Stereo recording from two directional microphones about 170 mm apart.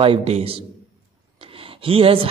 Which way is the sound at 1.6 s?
35° right (ahead or behind).